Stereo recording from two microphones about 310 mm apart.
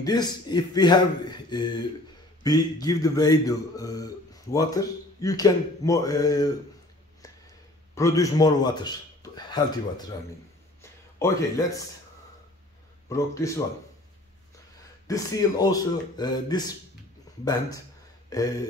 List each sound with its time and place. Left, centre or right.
0.0 s speech: centre
7.9 s a man's voice: centre
10.8 s a sound: centre
13.1 s speech: centre
15.0 s speech: centre
18.3 s speech: centre